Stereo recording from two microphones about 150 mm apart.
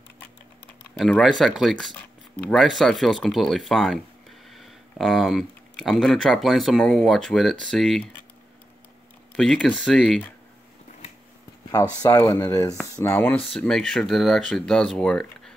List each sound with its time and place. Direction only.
0.9 s speech: 5° left (ahead or behind)
9.4 s speech: 5° left (ahead or behind)
12.0 s speech: 20° left (ahead or behind); by 15.5 s 5° left (ahead or behind)